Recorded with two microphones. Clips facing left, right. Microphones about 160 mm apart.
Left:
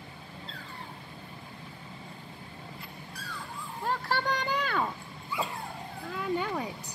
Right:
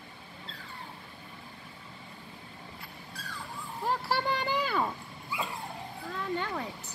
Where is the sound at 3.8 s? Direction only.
10° right (ahead or behind).